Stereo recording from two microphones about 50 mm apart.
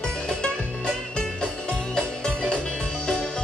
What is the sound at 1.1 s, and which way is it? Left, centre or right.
Music, centre.